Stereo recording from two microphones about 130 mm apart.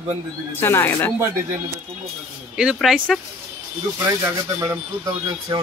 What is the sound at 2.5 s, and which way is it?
Speech, 5° right (ahead or behind).